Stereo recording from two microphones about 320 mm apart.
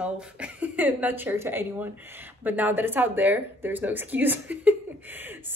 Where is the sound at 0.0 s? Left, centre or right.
Centre.